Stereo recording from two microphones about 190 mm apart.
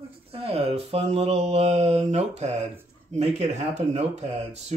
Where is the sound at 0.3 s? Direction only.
30° right (ahead or behind).